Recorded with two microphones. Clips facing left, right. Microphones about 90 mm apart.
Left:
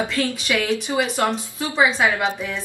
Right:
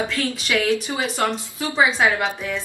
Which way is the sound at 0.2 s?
15° left (ahead or behind).